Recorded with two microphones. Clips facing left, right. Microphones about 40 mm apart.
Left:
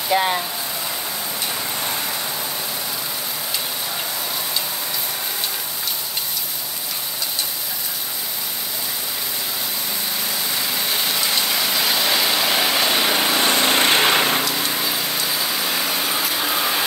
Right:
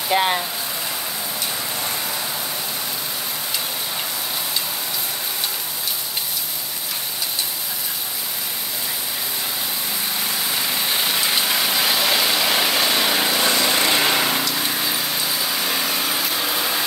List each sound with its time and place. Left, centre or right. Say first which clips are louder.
0.1 s speech: even; centre
10.5 s vehicle: right 1 dB; centre
13.3 s a sound: left 1 dB; left
13.6 s vehicle: left 2 dB; left
14.4 s vehicle: left 1 dB; centre